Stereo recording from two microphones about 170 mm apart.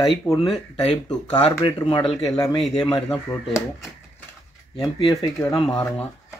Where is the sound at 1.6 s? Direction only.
30° left (ahead or behind).